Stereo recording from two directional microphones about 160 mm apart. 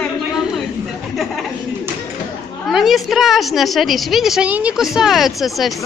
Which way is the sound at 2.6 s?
Centre (ahead or behind).